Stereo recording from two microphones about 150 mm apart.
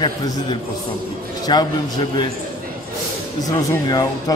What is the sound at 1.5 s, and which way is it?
Speech, 30° left (ahead or behind).